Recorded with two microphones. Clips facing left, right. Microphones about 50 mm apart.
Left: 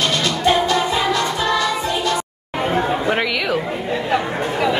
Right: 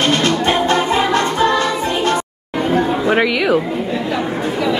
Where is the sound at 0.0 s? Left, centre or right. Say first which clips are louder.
Right 3 dB; right.